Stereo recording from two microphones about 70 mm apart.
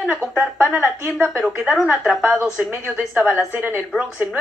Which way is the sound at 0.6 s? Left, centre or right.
Right.